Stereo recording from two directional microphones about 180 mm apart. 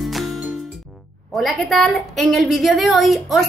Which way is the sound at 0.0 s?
Centre (ahead or behind).